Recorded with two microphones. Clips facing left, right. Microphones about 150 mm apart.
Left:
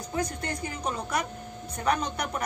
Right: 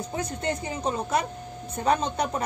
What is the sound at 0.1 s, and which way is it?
A woman's voice, 25° right (ahead or behind).